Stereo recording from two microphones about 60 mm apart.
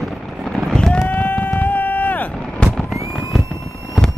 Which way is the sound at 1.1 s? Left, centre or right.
Left.